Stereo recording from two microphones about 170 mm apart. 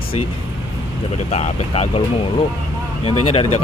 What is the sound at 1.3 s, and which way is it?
Speech, 35° left (ahead or behind).